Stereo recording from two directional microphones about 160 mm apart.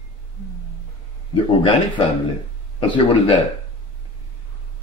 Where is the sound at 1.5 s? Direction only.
30° left (ahead or behind).